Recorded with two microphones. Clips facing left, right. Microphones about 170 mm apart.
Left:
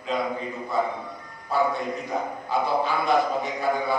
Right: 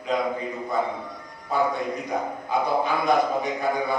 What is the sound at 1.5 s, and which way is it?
A man's voice, 20° right (ahead or behind).